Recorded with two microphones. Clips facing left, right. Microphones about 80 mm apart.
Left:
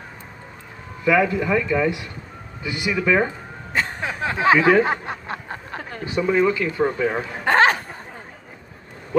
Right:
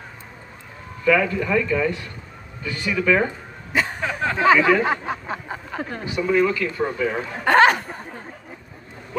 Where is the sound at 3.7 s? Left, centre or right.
Centre.